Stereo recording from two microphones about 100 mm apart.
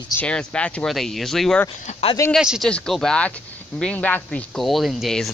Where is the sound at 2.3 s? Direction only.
5° right (ahead or behind).